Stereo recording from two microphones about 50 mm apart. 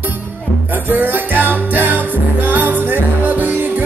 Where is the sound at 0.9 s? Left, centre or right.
Right.